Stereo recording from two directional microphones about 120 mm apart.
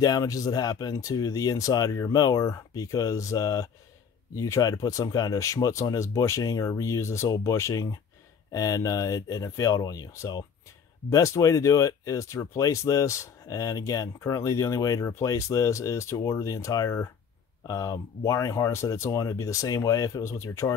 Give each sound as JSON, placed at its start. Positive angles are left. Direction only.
{"t": 0.0, "sound": "speech", "side_deg": 30}